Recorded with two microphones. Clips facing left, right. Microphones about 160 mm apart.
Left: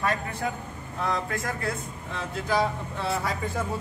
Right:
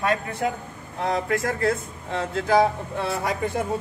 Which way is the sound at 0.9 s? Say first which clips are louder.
Right 4 dB; 20° right (ahead or behind).